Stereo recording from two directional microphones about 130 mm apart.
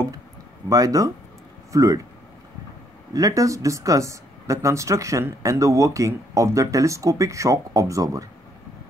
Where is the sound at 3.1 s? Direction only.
25° right (ahead or behind).